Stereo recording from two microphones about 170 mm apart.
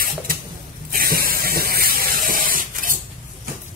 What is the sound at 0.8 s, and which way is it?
Spray, 60° right (ahead or behind).